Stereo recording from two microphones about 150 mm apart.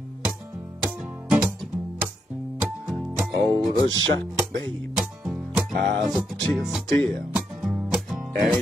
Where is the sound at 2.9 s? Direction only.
Centre (ahead or behind).